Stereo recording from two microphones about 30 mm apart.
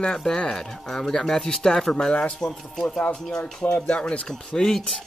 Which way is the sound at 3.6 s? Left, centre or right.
Left.